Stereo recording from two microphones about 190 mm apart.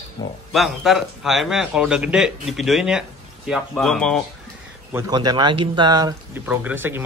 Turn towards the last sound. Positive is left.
turn(degrees=-10)  # may be behind; listen again after turning